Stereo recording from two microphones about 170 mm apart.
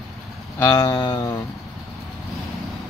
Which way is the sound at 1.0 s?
30° left (ahead or behind).